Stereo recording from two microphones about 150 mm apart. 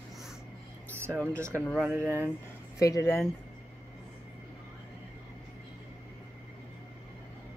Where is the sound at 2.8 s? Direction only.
20° left (ahead or behind).